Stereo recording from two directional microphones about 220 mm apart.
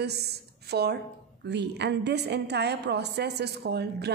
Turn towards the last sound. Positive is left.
turn(degrees=-50)  # may be behind; listen again after turning